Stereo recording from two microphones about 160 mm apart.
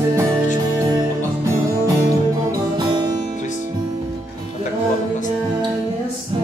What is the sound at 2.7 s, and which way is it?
Music, 25° right (ahead or behind).